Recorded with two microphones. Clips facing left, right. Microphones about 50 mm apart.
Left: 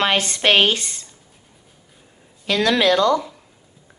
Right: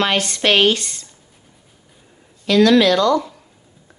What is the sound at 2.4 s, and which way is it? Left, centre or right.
Speech, centre.